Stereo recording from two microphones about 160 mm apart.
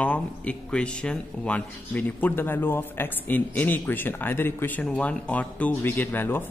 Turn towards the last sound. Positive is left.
turn(degrees=15)  # may be behind; listen again after turning